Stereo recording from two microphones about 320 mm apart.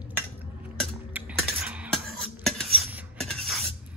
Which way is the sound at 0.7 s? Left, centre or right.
Centre.